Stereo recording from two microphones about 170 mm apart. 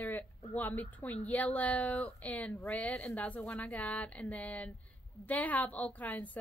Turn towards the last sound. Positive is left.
turn(degrees=10)  # may be behind; listen again after turning